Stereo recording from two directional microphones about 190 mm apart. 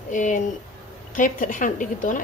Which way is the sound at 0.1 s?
40° left (ahead or behind).